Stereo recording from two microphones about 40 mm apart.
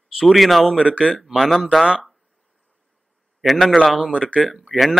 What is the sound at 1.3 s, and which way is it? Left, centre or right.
Speech, centre.